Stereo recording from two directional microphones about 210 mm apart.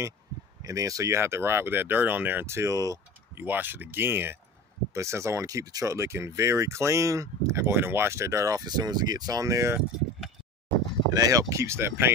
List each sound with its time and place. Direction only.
0.6 s speech: 15° right (ahead or behind)
11.1 s speech: 15° right (ahead or behind)